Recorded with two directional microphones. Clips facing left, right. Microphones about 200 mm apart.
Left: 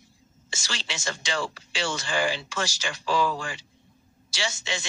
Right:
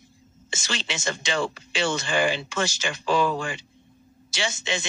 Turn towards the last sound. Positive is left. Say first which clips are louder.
# right 3 dB
turn(degrees=-20)  # may be behind; listen again after turning